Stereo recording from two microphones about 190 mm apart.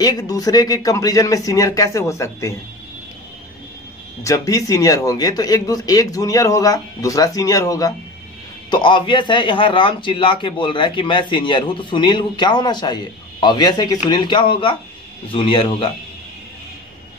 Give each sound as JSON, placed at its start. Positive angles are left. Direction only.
{"t": 0.0, "sound": "speech", "side_deg": 20}
{"t": 4.2, "sound": "a man's voice", "side_deg": 15}